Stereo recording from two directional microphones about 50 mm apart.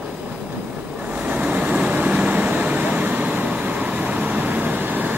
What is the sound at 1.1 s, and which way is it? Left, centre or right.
Vehicle, right.